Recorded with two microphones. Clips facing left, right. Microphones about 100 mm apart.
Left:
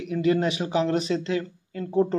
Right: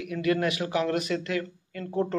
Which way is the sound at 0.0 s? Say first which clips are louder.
Left 3 dB; 25° left (ahead or behind).